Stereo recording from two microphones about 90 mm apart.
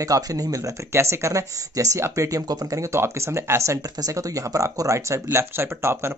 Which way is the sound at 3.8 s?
40° right (ahead or behind).